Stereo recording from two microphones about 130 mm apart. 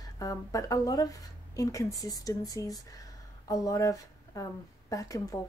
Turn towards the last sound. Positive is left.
turn(degrees=25)  # may be behind; listen again after turning